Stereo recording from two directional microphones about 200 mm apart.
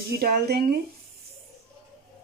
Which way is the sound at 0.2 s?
50° right (ahead or behind).